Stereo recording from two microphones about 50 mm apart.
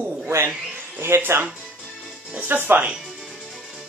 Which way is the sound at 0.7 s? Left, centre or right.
Right.